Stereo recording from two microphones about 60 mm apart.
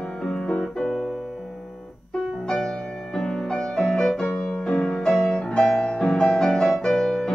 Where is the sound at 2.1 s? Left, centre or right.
Centre.